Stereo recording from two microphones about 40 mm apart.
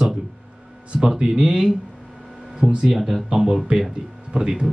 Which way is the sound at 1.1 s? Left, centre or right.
Centre.